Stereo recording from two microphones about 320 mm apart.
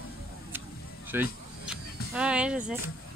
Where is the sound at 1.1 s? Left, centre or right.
Centre.